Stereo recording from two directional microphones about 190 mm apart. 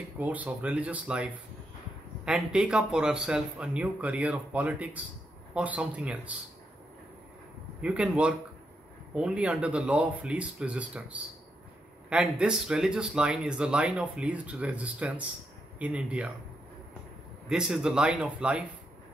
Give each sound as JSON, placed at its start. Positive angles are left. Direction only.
{"t": 0.2, "sound": "speech", "side_deg": -10}
{"t": 7.8, "sound": "speech", "side_deg": -5}
{"t": 17.5, "sound": "speech", "side_deg": -5}